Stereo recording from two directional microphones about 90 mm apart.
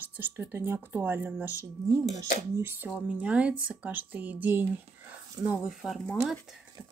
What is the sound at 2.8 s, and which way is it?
A woman's voice, 15° right (ahead or behind).